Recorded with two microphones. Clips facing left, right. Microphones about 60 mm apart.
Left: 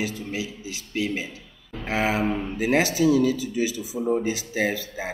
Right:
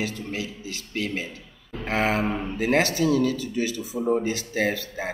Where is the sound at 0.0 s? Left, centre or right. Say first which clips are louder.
Left 1 dB; centre.